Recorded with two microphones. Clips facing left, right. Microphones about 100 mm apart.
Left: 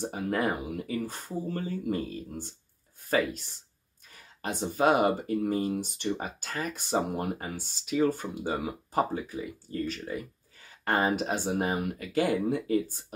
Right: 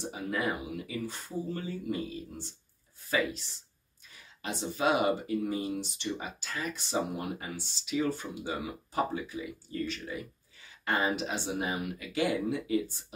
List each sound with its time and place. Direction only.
0.0 s speech: 50° left (ahead or behind)